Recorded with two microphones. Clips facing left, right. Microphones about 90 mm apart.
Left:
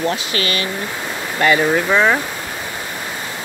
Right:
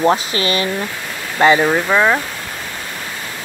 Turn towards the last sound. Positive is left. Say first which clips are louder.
# right 1 dB
turn(degrees=-5)  # may be behind; listen again after turning